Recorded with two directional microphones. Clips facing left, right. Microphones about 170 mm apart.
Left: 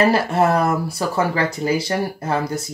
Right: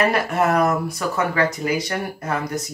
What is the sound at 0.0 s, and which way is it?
Speech, 30° left (ahead or behind).